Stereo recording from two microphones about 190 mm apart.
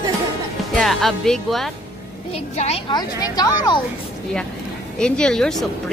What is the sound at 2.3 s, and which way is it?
Speech, 35° left (ahead or behind).